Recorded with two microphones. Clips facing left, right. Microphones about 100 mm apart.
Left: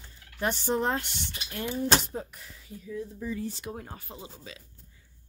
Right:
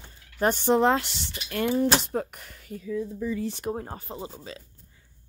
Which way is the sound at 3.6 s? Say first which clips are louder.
Right 7 dB; 35° right (ahead or behind).